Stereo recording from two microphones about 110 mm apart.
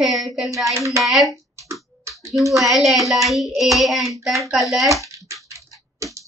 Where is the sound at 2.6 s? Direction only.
Centre (ahead or behind).